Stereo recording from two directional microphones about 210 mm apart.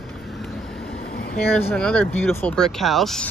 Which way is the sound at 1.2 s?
45° left (ahead or behind).